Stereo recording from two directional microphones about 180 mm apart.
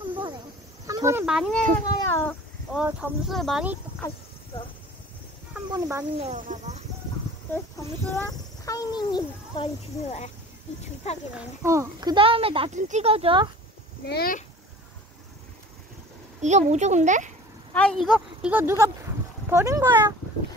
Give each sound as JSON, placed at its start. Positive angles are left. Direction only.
{"t": 0.0, "sound": "a sound", "side_deg": -25}
{"t": 0.8, "sound": "cricket", "side_deg": -15}
{"t": 1.2, "sound": "speech", "side_deg": 0}
{"t": 2.0, "sound": "speech", "side_deg": 15}
{"t": 2.7, "sound": "speech", "side_deg": -5}
{"t": 5.7, "sound": "speech", "side_deg": -15}
{"t": 6.2, "sound": "a child's voice", "side_deg": -40}
{"t": 7.7, "sound": "a child's voice", "side_deg": 15}
{"t": 10.0, "sound": "speech", "side_deg": 40}
{"t": 11.3, "sound": "speech", "side_deg": -15}
{"t": 14.0, "sound": "speech", "side_deg": 60}
{"t": 16.3, "sound": "a child's voice", "side_deg": -40}
{"t": 17.7, "sound": "speech", "side_deg": 5}